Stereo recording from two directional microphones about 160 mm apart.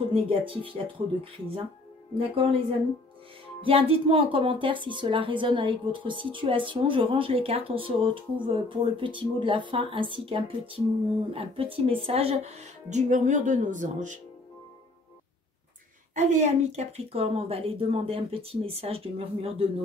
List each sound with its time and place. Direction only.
0.1 s a woman's voice: 35° right (ahead or behind)
3.6 s a woman's voice: 35° right (ahead or behind)
16.2 s a woman's voice: 45° right (ahead or behind)